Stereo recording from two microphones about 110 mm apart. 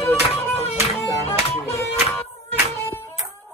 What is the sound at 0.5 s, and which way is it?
Music, 75° left (ahead or behind).